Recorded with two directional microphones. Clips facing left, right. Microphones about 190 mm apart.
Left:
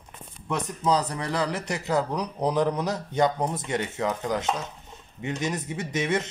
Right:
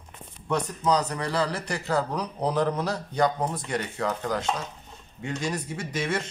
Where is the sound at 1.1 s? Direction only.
20° left (ahead or behind).